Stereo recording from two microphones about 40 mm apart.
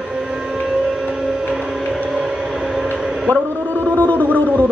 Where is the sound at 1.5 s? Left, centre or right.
Right.